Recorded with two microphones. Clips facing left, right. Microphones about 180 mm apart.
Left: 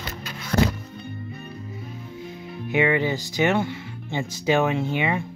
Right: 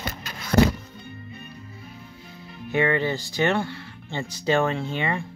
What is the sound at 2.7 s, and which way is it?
Speech, 15° left (ahead or behind).